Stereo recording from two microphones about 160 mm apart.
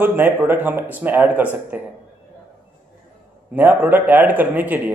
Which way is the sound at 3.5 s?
10° right (ahead or behind).